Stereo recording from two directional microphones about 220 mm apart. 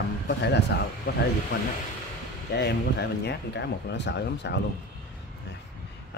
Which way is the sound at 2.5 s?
50° left (ahead or behind).